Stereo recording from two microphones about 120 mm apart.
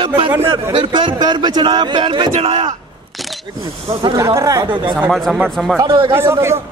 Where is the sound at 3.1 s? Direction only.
Centre (ahead or behind).